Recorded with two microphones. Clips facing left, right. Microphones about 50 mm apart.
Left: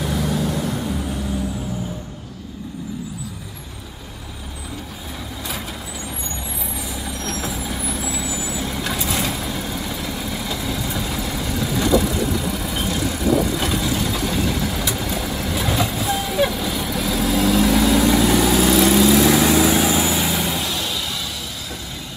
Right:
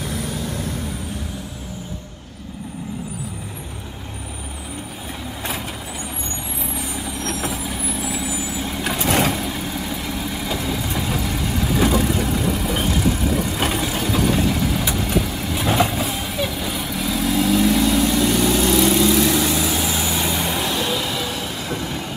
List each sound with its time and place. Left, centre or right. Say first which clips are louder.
7.1 s vehicle: right 1 dB; centre
9.0 s vehicle: right 8 dB; right
9.4 s vehicle: right 1 dB; centre
11.7 s vehicle: even; right
14.0 s vehicle: right 3 dB; centre
21.3 s vehicle: right 5 dB; right